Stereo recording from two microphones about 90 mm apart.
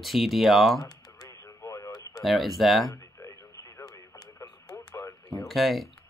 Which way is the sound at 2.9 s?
35° left (ahead or behind).